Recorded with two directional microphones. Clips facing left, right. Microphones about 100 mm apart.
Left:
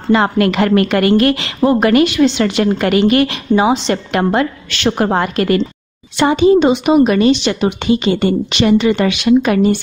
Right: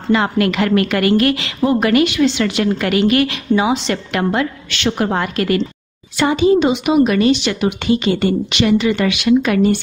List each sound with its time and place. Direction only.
0.1 s a woman's voice: 35° left (ahead or behind)